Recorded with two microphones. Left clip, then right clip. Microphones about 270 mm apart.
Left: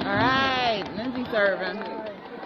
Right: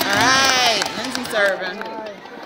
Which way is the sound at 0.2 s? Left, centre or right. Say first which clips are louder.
Right 7 dB; centre.